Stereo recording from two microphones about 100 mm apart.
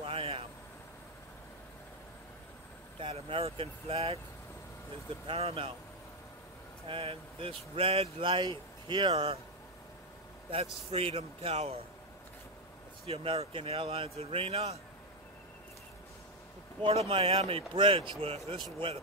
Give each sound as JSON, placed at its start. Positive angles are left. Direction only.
{"t": 0.0, "sound": "vehicle", "side_deg": -70}
{"t": 3.0, "sound": "speech", "side_deg": -70}
{"t": 5.2, "sound": "speech", "side_deg": -75}
{"t": 6.9, "sound": "speech", "side_deg": -65}
{"t": 9.1, "sound": "speech", "side_deg": -75}
{"t": 10.5, "sound": "speech", "side_deg": -80}
{"t": 13.0, "sound": "speech", "side_deg": -75}
{"t": 16.8, "sound": "speech", "side_deg": -80}
{"t": 17.2, "sound": "speech", "side_deg": -65}